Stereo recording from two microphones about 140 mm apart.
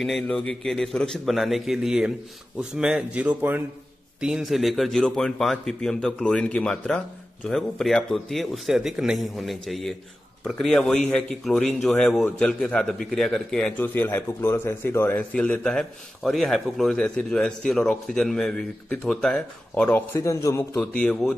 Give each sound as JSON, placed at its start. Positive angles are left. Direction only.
{"t": 0.0, "sound": "a man's voice", "side_deg": 5}
{"t": 20.2, "sound": "a man's voice", "side_deg": 20}
{"t": 20.9, "sound": "speech", "side_deg": 10}